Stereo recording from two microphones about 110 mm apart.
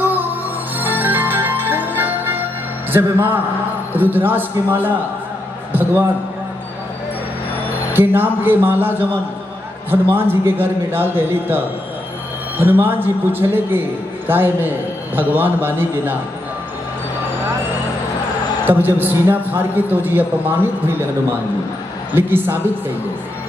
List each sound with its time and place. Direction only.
0.0 s music: 15° right (ahead or behind)
2.9 s a man's voice: 20° right (ahead or behind)
5.7 s a sound: 15° right (ahead or behind)
7.9 s a man's voice: 20° right (ahead or behind)
18.7 s a man's voice: 15° right (ahead or behind)
22.1 s a man's voice: 20° right (ahead or behind)